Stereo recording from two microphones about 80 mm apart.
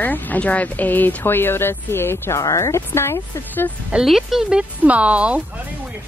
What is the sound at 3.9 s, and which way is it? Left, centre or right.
Speech, centre.